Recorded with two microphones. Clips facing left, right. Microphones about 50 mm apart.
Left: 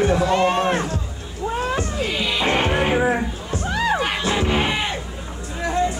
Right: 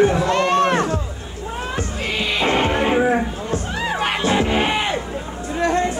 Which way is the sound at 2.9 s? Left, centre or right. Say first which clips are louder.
Right 2 dB; centre.